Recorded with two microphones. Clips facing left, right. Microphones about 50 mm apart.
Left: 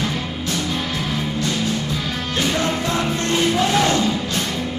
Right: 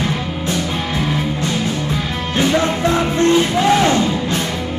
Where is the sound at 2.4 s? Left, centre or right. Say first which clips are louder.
Right 6 dB; right.